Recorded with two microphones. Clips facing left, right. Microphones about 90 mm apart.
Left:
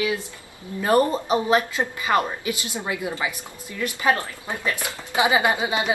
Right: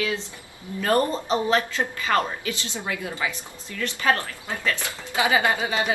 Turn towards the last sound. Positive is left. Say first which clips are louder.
# left 1 dB
turn(degrees=20)  # may be behind; listen again after turning